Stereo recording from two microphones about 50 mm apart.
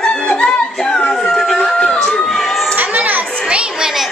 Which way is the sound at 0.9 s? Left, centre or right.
Centre.